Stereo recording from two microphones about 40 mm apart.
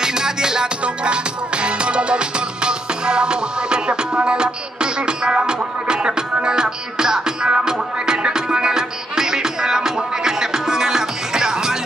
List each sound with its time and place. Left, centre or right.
0.0 s music: centre